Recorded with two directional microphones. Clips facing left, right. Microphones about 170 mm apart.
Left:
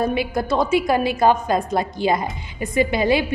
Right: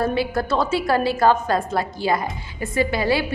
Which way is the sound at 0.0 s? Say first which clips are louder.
Even; 15° left (ahead or behind).